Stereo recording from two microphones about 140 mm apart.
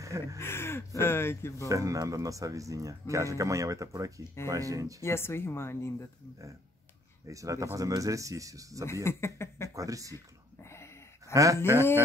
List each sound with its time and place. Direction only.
0.0 s speech: 20° right (ahead or behind)
0.4 s speech: 15° left (ahead or behind)
1.7 s speech: 25° right (ahead or behind)
5.0 s speech: 15° left (ahead or behind)
7.2 s speech: 25° right (ahead or behind)
9.0 s speech: 20° left (ahead or behind)
9.8 s speech: 25° right (ahead or behind)
10.1 s a sound: 20° left (ahead or behind)
11.3 s speech: 25° right (ahead or behind)